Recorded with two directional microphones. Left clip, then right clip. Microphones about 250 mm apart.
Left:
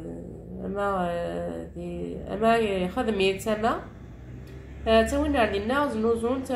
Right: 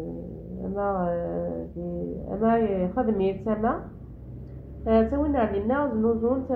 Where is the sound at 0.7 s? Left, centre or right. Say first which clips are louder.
Even; centre.